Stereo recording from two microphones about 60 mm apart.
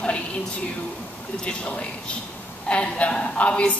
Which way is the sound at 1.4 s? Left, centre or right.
Centre.